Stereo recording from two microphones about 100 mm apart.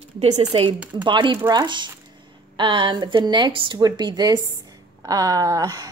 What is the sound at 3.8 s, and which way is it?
A woman's voice, 45° right (ahead or behind).